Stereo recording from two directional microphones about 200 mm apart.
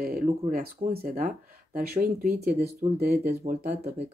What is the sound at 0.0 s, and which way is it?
Speech, 45° right (ahead or behind).